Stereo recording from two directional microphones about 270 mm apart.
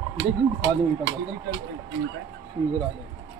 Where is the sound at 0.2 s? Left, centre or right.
Right.